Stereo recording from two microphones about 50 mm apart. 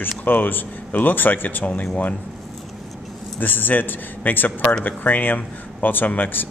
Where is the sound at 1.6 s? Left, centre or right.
Left.